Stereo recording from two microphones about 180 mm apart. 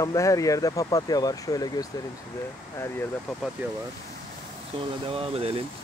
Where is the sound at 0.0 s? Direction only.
20° left (ahead or behind).